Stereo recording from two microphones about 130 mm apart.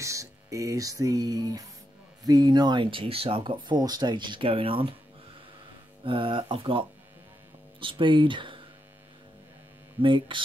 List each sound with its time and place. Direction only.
0.0 s speech: 25° right (ahead or behind); by 4.9 s 45° right (ahead or behind)
6.0 s speech: 40° right (ahead or behind)
10.0 s speech: 40° right (ahead or behind)